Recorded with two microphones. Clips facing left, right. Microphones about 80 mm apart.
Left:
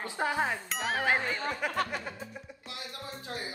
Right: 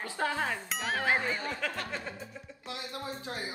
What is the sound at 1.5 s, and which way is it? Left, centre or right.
Speech, left.